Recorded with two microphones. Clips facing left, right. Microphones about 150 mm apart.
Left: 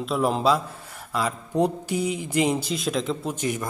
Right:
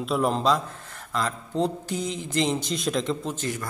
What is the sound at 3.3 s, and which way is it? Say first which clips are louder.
Speech: left 3 dB; 15° left (ahead or behind).